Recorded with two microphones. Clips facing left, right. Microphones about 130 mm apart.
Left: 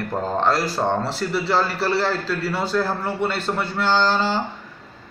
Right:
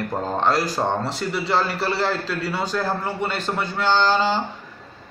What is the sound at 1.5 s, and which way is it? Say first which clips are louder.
Speech: left 1 dB; 15° right (ahead or behind).